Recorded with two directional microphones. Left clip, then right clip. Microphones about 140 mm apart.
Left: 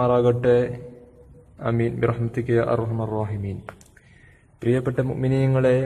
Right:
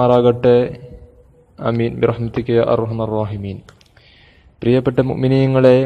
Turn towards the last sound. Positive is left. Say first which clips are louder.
# right 8 dB
turn(degrees=-45)  # may be behind; listen again after turning